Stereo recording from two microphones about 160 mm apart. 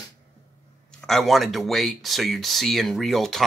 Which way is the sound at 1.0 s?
Centre (ahead or behind).